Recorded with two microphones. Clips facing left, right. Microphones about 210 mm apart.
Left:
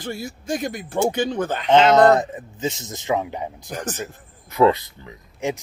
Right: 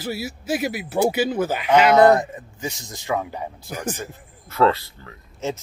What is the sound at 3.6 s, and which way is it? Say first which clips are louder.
Speech: right 2 dB; 10° right (ahead or behind).